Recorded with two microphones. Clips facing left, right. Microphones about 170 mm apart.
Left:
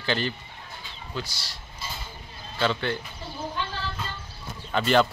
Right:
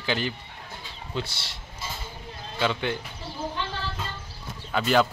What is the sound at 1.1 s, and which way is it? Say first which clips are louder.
Speech: right 2 dB; 25° right (ahead or behind).